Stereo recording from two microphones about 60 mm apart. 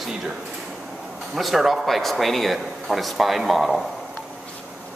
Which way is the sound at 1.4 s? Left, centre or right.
Centre.